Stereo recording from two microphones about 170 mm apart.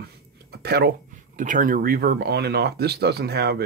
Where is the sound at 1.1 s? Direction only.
50° right (ahead or behind); by 3.6 s 70° right (ahead or behind).